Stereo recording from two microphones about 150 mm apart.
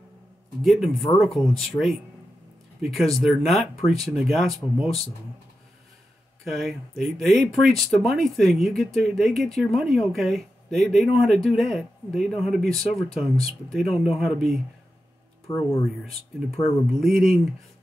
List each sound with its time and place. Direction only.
0.7 s speech: centre (ahead or behind)
6.4 s speech: centre (ahead or behind)
15.4 s speech: 20° left (ahead or behind)
15.8 s speech: centre (ahead or behind)